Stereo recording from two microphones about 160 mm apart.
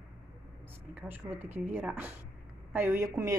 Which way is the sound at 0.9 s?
10° right (ahead or behind).